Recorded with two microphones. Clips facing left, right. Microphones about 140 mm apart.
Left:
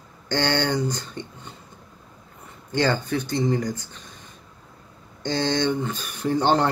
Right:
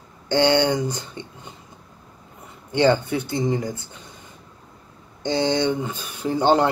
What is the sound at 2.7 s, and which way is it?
Speech, 15° right (ahead or behind).